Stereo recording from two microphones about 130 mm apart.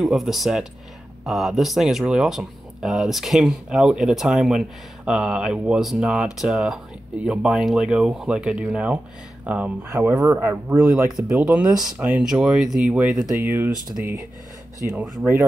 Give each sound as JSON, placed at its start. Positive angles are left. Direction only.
{"t": 0.0, "sound": "speech", "side_deg": 0}
{"t": 13.4, "sound": "speech", "side_deg": -15}
{"t": 15.0, "sound": "speech", "side_deg": -20}